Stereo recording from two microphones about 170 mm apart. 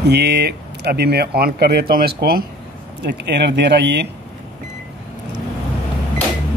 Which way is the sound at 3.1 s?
90° right.